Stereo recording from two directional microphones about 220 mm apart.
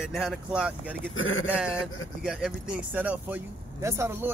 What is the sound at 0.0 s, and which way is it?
Speech, centre (ahead or behind).